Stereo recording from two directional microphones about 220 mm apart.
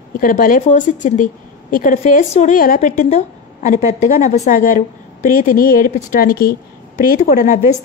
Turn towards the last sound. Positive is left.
turn(degrees=40)  # may be behind; listen again after turning